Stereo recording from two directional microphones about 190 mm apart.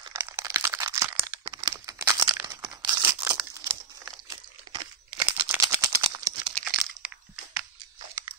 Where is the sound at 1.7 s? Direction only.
20° right (ahead or behind).